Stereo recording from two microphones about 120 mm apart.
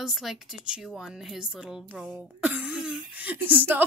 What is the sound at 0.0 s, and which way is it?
A woman's voice, centre (ahead or behind).